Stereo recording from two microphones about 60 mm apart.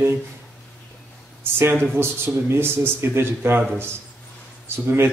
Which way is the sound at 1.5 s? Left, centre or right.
Right.